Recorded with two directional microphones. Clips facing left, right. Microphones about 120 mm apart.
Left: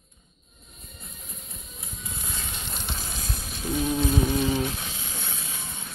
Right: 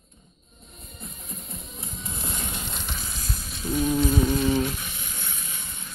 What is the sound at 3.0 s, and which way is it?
Music, 50° left (ahead or behind).